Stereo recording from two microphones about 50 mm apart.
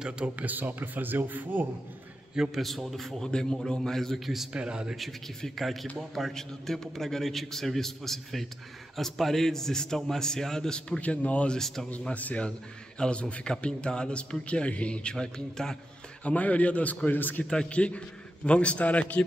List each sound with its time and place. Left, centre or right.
0.4 s a man's voice: right
2.3 s speech: centre
2.6 s a man's voice: centre
3.3 s a man's voice: centre
4.6 s speech: centre
5.6 s a man's voice: centre
10.9 s a man's voice: left
11.5 s a man's voice: centre
12.0 s a man's voice: left; by 15.8 s centre
16.3 s a man's voice: left
17.5 s a man's voice: left